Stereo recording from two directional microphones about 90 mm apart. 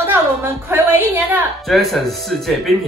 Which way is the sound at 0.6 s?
20° right (ahead or behind).